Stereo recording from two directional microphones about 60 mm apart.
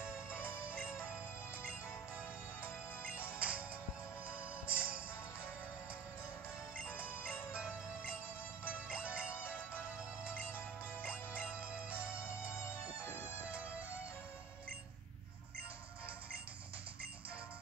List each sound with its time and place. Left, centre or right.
0.0 s music: left
3.3 s music: right
4.6 s music: right
6.8 s music: left
8.6 s music: centre
9.3 s music: left
13.4 s music: right